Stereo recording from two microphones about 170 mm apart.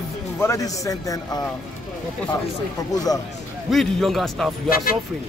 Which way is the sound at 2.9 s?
20° left (ahead or behind).